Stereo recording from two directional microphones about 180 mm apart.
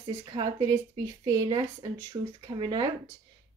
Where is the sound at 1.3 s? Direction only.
20° right (ahead or behind).